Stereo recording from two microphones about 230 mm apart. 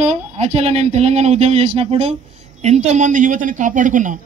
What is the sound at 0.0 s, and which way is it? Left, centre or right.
Speech, right.